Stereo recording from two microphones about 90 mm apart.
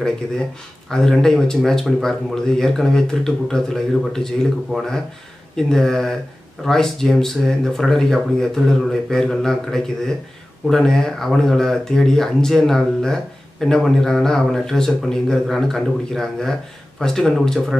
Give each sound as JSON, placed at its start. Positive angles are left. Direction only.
{"t": 0.8, "sound": "speech", "side_deg": 5}